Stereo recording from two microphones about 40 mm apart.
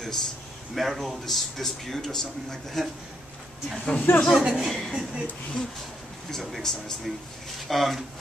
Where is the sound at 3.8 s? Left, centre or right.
Left.